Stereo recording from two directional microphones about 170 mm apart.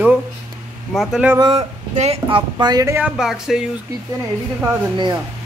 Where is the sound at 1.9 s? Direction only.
40° right (ahead or behind); by 3.6 s 5° right (ahead or behind).